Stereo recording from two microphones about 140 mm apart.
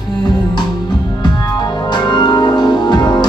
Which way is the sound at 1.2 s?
30° left (ahead or behind).